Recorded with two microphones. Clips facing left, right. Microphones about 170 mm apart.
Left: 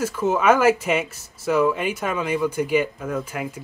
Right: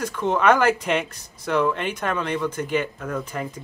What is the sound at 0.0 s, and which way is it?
Speech, 5° left (ahead or behind).